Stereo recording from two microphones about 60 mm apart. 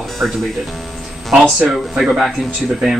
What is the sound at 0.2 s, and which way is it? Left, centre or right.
Speech, right.